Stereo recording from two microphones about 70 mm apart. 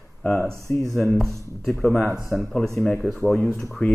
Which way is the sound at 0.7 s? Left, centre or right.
Left.